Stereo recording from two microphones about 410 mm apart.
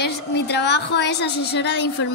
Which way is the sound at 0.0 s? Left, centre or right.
Left.